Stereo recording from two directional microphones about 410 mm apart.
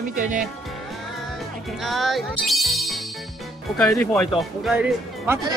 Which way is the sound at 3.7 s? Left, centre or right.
Centre.